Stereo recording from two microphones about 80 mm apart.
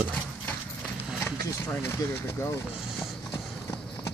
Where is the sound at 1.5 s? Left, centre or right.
Left.